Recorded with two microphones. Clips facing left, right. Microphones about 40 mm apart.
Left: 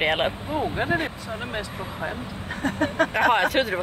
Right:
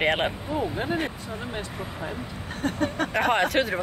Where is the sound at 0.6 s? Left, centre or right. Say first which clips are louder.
Left 3 dB; left.